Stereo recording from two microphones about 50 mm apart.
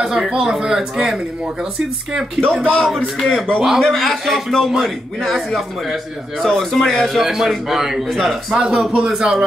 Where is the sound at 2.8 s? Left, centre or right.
Centre.